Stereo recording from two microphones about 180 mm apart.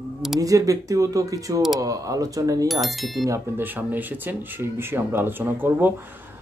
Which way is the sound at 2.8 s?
Centre (ahead or behind).